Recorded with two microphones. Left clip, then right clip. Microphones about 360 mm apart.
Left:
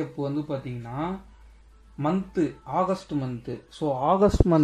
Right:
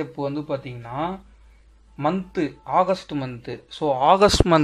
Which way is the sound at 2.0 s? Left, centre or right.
Right.